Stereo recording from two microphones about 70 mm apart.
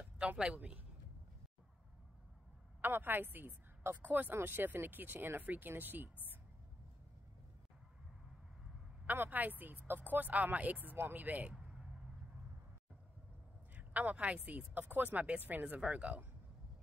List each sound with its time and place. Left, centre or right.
0.3 s a woman's voice: right
2.8 s a woman's voice: right
9.0 s a woman's voice: right
11.5 s vehicle: centre
13.7 s a woman's voice: right